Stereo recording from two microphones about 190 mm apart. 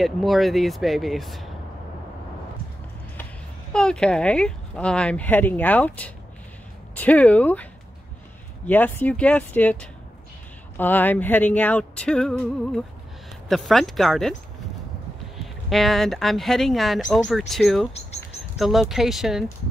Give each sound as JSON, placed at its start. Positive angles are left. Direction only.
{"t": 0.0, "sound": "speech", "side_deg": 0}
{"t": 3.7, "sound": "speech", "side_deg": 5}
{"t": 8.6, "sound": "speech", "side_deg": 10}
{"t": 15.3, "sound": "speech", "side_deg": 0}